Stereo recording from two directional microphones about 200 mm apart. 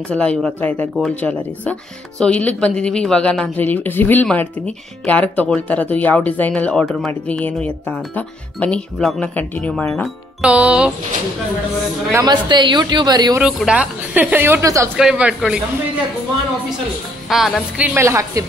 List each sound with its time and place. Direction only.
0.1 s speech: 5° left (ahead or behind)
12.1 s a woman's voice: 20° right (ahead or behind)
13.4 s a woman's voice: 5° right (ahead or behind)
15.0 s speech: 5° right (ahead or behind)
17.3 s a woman's voice: centre (ahead or behind)